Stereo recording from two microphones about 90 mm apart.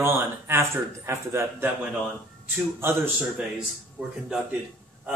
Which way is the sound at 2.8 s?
30° right (ahead or behind).